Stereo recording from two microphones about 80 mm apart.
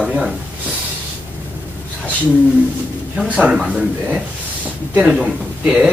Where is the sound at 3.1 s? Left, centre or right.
Centre.